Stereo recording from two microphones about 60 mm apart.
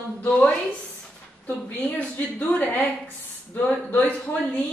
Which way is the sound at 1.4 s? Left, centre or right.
Left.